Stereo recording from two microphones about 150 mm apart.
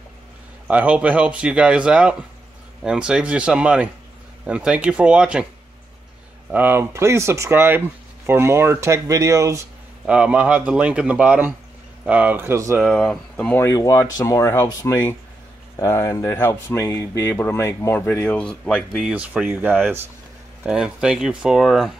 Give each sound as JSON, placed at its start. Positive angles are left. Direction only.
{"t": 0.7, "sound": "speech", "side_deg": -10}
{"t": 6.5, "sound": "speech", "side_deg": -15}
{"t": 10.0, "sound": "speech", "side_deg": -5}
{"t": 12.8, "sound": "speech", "side_deg": 5}
{"t": 19.0, "sound": "speech", "side_deg": -10}